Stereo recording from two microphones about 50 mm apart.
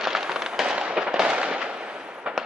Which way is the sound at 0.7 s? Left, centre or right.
Right.